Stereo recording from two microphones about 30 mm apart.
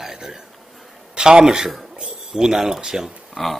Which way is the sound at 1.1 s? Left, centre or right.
Right.